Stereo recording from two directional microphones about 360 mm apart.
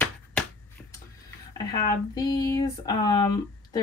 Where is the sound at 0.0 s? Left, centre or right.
Centre.